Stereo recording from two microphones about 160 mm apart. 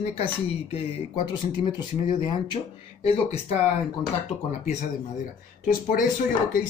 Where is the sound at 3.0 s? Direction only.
40° left (ahead or behind).